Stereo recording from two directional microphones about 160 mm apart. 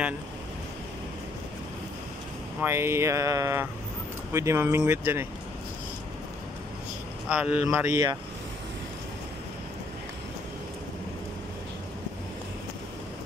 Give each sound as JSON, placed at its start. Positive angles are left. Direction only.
{"t": 2.6, "sound": "speech", "side_deg": -15}
{"t": 7.2, "sound": "speech", "side_deg": -5}